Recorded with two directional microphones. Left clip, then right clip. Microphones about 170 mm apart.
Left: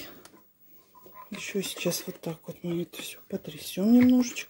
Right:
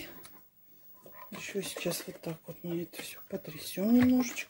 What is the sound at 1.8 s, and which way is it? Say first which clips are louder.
Speech: left 5 dB; 40° left (ahead or behind).